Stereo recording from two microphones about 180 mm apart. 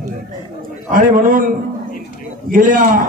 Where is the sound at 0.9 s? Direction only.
50° right (ahead or behind).